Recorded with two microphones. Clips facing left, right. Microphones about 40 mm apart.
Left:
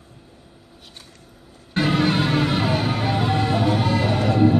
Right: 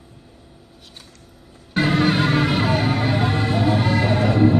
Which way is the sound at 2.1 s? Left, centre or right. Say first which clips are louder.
Right 2 dB; centre.